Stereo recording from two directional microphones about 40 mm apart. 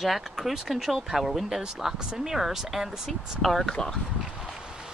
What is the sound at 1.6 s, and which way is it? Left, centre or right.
Speech, centre.